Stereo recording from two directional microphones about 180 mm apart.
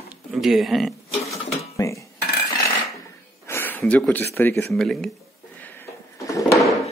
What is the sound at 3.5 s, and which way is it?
Speech, 10° left (ahead or behind).